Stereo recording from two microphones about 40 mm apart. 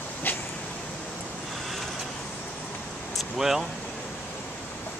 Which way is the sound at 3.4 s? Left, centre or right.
Centre.